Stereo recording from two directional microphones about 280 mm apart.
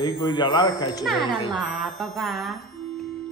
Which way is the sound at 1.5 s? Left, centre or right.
Centre.